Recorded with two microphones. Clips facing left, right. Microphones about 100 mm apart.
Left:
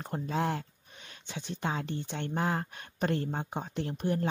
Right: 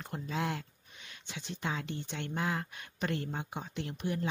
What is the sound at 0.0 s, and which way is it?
Speech, 40° left (ahead or behind).